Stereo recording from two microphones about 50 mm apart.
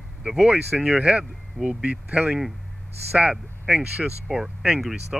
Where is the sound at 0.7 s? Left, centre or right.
Centre.